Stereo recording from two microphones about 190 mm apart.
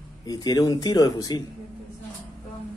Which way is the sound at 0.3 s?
20° left (ahead or behind).